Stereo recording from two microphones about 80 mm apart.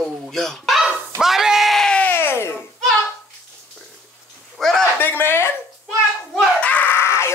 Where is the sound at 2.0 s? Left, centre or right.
Left.